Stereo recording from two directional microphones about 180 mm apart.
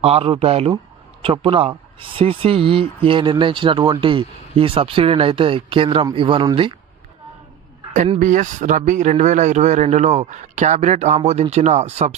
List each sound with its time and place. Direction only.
0.0 s a man's voice: 35° right (ahead or behind)
8.2 s a man's voice: 45° right (ahead or behind)